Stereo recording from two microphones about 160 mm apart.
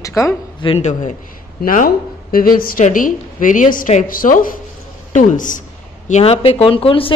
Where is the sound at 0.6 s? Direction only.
35° left (ahead or behind).